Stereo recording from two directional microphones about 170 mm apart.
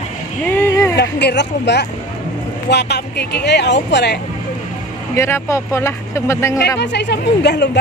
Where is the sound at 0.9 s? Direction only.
80° left.